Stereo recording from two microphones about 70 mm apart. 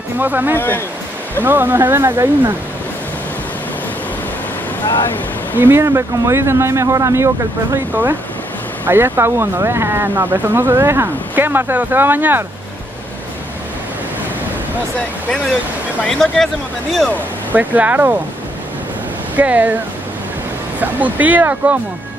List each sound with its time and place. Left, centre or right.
0.2 s speech: right
0.6 s speech: left
1.4 s speech: right
5.6 s speech: right
5.9 s speech: right
7.9 s speech: right
16.1 s speech: centre
17.5 s speech: right
19.3 s speech: right
20.8 s speech: right